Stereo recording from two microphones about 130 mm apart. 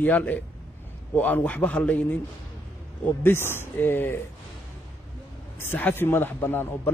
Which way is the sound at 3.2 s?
15° left (ahead or behind).